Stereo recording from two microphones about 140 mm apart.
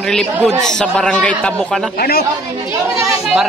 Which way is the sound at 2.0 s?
90° left.